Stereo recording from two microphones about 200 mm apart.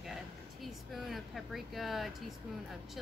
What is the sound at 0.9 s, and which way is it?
A woman's voice, centre (ahead or behind).